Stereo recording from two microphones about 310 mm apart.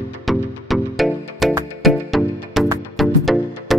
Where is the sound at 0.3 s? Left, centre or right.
Centre.